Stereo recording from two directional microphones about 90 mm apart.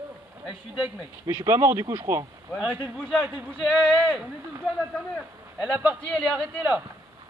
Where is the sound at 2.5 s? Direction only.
10° right (ahead or behind).